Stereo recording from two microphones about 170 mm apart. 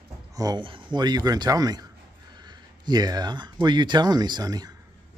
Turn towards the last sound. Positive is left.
turn(degrees=-20)  # may be behind; listen again after turning